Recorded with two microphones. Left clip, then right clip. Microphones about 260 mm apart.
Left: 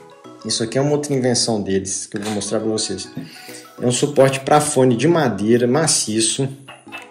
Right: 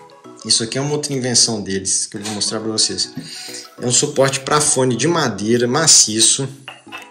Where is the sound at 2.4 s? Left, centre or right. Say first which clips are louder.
Right 2 dB; centre.